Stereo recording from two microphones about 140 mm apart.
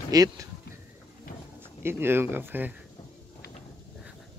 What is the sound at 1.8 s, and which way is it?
Speech, 15° right (ahead or behind).